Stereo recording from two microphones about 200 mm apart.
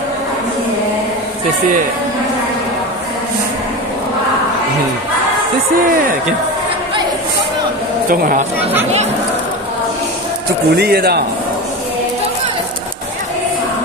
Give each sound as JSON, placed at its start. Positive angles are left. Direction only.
{"t": 8.1, "sound": "a man's voice", "side_deg": -45}
{"t": 10.7, "sound": "a man's voice", "side_deg": -50}